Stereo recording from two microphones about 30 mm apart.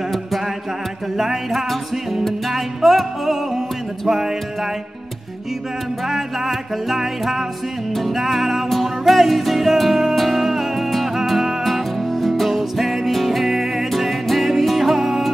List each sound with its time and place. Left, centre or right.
1.1 s music: centre
6.0 s music: centre